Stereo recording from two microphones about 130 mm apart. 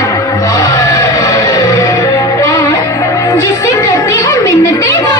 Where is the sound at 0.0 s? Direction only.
25° left (ahead or behind).